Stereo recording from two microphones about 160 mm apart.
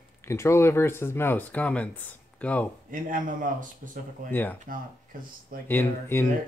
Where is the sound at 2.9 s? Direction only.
55° right (ahead or behind).